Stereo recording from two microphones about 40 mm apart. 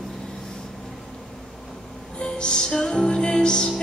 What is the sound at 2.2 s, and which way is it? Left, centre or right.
Music, left.